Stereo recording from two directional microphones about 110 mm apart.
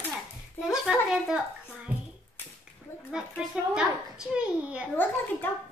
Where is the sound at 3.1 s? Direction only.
5° right (ahead or behind).